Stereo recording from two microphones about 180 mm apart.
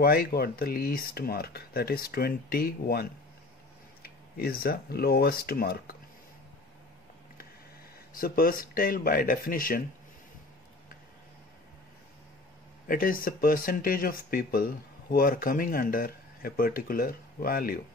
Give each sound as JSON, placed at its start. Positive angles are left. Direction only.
{"t": 0.0, "sound": "speech", "side_deg": 60}
{"t": 8.2, "sound": "speech", "side_deg": 55}
{"t": 12.8, "sound": "speech", "side_deg": 50}